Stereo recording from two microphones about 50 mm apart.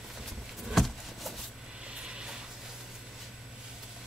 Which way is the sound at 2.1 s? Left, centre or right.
Centre.